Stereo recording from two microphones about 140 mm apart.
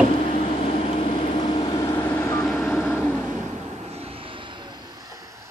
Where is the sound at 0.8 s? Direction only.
45° left (ahead or behind).